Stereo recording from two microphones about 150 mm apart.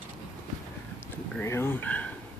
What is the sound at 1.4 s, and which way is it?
Speech, 15° left (ahead or behind).